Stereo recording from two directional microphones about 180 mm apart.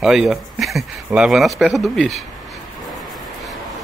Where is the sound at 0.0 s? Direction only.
5° right (ahead or behind).